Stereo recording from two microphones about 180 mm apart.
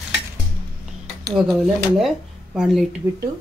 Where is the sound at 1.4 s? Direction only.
Centre (ahead or behind).